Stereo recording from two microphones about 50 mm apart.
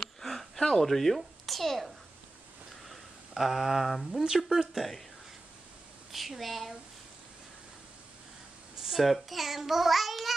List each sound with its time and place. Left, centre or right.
0.0 s a sound: centre
2.9 s a woman's voice: centre
6.1 s a woman's voice: centre
8.8 s a child's voice: centre